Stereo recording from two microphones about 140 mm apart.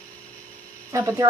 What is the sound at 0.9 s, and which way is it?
Speech, 20° right (ahead or behind).